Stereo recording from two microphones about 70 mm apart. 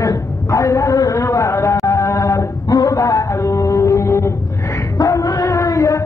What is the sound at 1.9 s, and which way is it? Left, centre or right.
Chant, left.